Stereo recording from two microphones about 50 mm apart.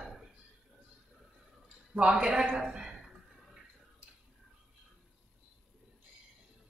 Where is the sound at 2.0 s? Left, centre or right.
Centre.